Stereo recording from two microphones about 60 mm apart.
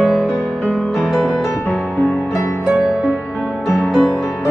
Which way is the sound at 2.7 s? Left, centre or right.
Centre.